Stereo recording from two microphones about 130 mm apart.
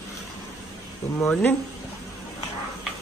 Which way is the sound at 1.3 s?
10° left (ahead or behind).